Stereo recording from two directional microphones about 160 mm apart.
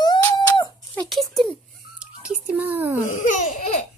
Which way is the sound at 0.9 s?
Centre (ahead or behind).